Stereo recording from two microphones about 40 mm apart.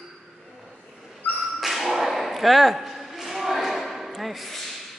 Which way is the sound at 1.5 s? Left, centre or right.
Centre.